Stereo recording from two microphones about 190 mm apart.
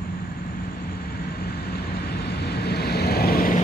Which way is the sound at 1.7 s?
60° left (ahead or behind).